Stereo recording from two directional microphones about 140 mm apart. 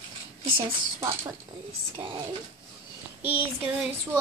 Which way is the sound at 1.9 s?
40° right (ahead or behind).